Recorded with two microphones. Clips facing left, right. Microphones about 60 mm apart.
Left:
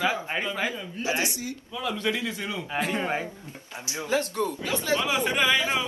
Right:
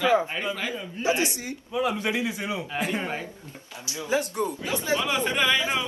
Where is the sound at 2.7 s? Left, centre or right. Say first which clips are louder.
Left 2 dB; centre.